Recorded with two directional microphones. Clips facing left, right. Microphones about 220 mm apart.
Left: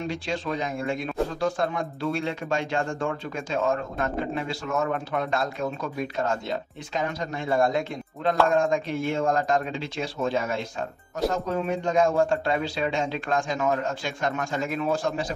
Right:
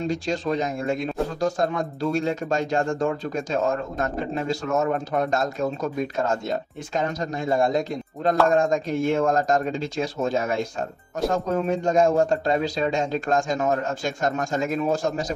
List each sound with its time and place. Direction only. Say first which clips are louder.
0.1 s speech: right 5 dB; 40° right (ahead or behind)